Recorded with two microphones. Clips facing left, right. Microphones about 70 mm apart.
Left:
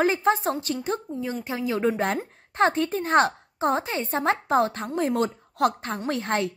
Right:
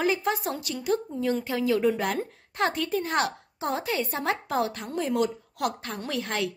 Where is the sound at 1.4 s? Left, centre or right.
Left.